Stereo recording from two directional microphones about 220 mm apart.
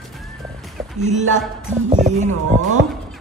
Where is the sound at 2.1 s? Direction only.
35° right (ahead or behind).